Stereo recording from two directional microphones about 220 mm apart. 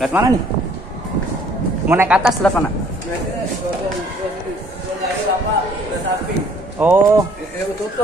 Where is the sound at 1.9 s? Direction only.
10° right (ahead or behind).